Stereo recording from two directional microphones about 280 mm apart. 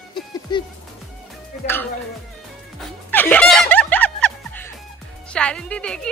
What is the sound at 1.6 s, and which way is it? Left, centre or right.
Speech, left.